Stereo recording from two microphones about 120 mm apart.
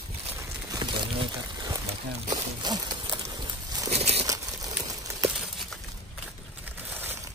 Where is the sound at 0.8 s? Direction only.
45° right (ahead or behind).